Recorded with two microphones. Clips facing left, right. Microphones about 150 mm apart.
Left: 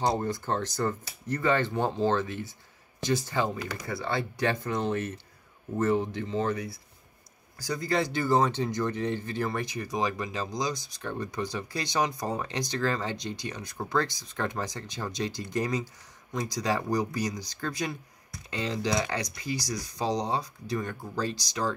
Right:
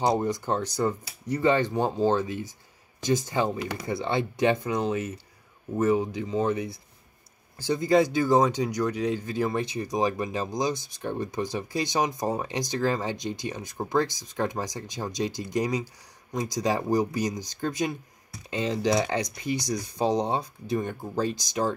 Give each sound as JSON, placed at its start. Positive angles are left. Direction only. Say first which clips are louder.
{"t": 0.0, "sound": "speech", "louder": "right 3 dB", "side_deg": -15}
{"t": 7.6, "sound": "speech", "louder": "right 7 dB", "side_deg": -20}
{"t": 20.0, "sound": "speech", "louder": "right 4 dB", "side_deg": -55}
{"t": 20.2, "sound": "speech", "louder": "right 3 dB", "side_deg": -20}